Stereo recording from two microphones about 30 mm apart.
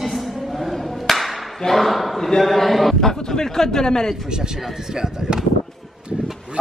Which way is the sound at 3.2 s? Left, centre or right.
Centre.